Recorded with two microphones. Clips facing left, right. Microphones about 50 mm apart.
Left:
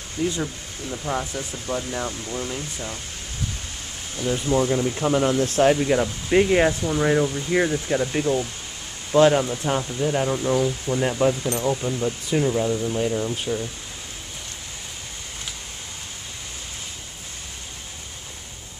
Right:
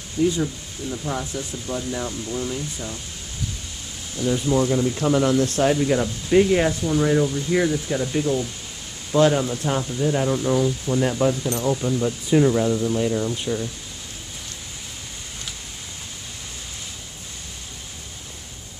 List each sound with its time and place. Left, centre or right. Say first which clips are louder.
0.4 s speech: right 3 dB; centre
4.2 s speech: right 1 dB; centre
5.4 s speech: left 1 dB; left
9.5 s speech: even; centre